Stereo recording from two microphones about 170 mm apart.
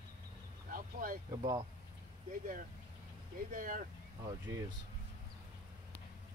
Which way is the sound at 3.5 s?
50° right (ahead or behind).